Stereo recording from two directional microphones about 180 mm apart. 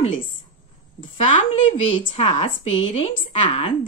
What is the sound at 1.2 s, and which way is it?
Speech, 35° left (ahead or behind).